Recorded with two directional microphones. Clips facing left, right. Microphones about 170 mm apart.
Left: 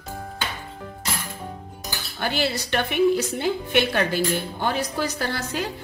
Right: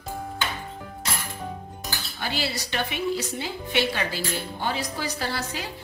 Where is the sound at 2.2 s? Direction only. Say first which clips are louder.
Left 5 dB; 55° left (ahead or behind).